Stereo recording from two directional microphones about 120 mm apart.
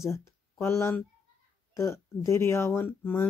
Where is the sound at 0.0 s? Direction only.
25° left (ahead or behind).